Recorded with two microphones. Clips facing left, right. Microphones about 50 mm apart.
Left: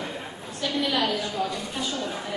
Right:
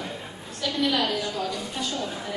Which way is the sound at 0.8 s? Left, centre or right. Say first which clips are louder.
Right 2 dB; centre.